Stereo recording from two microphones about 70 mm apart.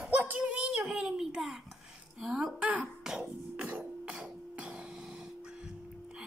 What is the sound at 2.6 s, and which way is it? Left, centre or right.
A woman's voice, centre.